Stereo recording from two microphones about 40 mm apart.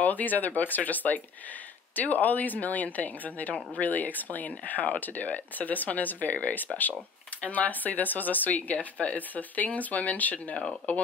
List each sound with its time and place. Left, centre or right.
0.0 s speech: left